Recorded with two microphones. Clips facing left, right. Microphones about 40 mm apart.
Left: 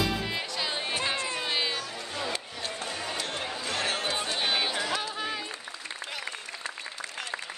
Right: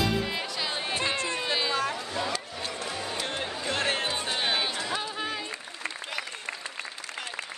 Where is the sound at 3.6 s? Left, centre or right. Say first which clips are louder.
Right 3 dB; right.